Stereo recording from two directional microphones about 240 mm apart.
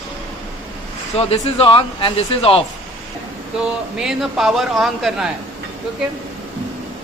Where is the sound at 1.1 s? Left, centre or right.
Left.